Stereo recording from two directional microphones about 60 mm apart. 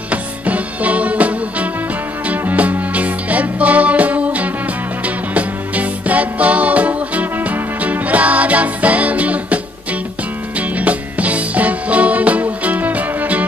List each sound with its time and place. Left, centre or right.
0.1 s music: right
10.8 s music: right